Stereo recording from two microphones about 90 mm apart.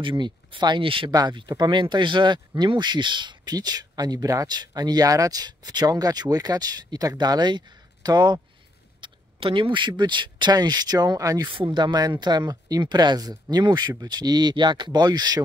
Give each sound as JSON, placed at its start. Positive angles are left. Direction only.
{"t": 0.2, "sound": "speech", "side_deg": -55}
{"t": 1.1, "sound": "speech", "side_deg": -55}
{"t": 9.0, "sound": "speech", "side_deg": -75}
{"t": 11.4, "sound": "speech", "side_deg": -65}